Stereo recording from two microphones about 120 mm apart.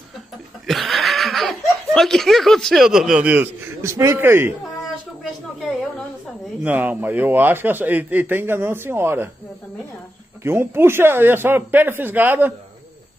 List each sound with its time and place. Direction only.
0.7 s laughter: centre (ahead or behind)
3.8 s speech: 25° right (ahead or behind)
6.6 s a man's voice: 15° right (ahead or behind)
10.4 s a man's voice: 20° right (ahead or behind)